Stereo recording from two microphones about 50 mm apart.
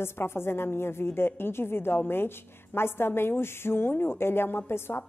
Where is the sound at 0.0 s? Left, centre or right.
Left.